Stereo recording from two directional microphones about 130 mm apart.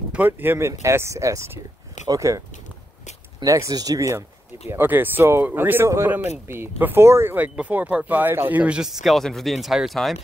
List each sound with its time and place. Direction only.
0.3 s speech: 20° right (ahead or behind)
3.4 s speech: 25° right (ahead or behind)
4.6 s speech: 15° right (ahead or behind); by 10.1 s centre (ahead or behind)